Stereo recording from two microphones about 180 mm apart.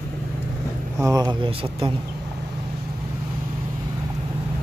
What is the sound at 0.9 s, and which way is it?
Speech, 15° right (ahead or behind).